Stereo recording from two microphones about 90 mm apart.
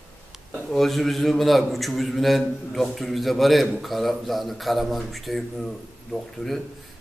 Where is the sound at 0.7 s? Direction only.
Centre (ahead or behind).